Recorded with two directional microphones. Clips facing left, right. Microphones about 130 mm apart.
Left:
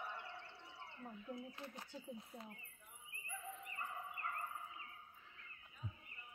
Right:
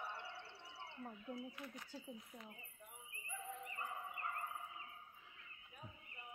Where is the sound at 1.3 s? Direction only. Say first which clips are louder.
Even; 30° left (ahead or behind).